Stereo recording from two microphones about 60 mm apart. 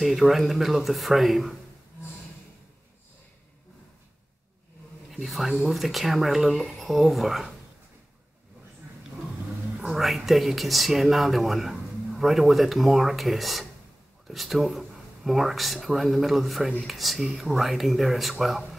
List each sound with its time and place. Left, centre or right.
0.0 s speech: centre
5.1 s speech: centre
9.8 s speech: centre